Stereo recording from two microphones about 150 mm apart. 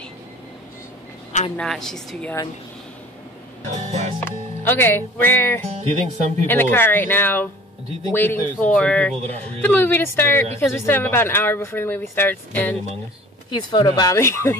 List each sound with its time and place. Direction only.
1.6 s a woman's voice: 5° left (ahead or behind)
3.7 s speech: 50° right (ahead or behind)
4.2 s speech: 15° left (ahead or behind)
5.7 s speech: 45° right (ahead or behind)
6.4 s speech: 15° left (ahead or behind)
13.5 s speech: 30° left (ahead or behind)